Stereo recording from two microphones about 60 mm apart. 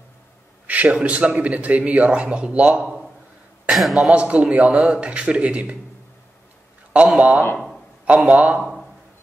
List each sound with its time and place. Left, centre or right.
0.7 s a man's voice: right
2.8 s a man's voice: centre
4.1 s a man's voice: right
6.9 s a man's voice: right
7.5 s a sound: centre
8.3 s a man's voice: right